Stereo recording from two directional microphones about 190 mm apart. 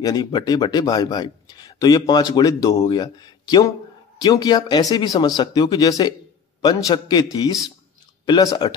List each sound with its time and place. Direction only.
0.0 s speech: 20° left (ahead or behind)